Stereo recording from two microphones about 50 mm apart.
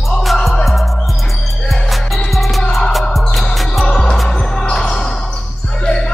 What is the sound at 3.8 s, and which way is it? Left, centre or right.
Music, centre.